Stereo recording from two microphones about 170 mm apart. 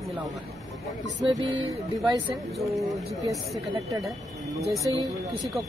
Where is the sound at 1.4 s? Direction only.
30° right (ahead or behind).